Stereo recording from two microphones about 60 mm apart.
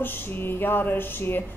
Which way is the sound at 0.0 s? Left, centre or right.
Left.